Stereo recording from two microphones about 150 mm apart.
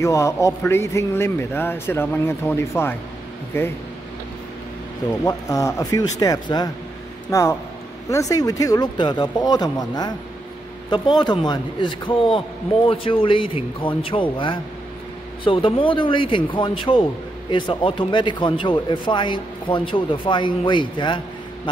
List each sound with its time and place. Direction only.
0.0 s a man's voice: 20° left (ahead or behind)
5.2 s speech: 20° left (ahead or behind)